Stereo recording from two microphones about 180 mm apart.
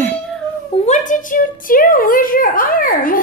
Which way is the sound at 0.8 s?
40° left (ahead or behind).